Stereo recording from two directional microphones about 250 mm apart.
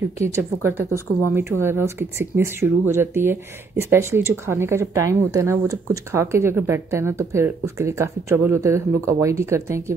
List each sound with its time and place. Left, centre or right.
0.2 s speech: centre
0.7 s a woman's voice: right
1.3 s speech: centre